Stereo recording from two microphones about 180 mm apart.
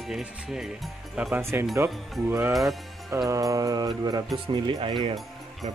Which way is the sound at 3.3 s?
20° right (ahead or behind).